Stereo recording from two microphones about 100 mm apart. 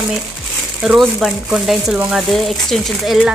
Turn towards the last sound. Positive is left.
turn(degrees=0)  # may be behind; listen again after turning